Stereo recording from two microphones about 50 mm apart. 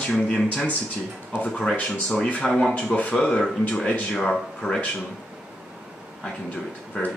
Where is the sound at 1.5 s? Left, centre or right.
Centre.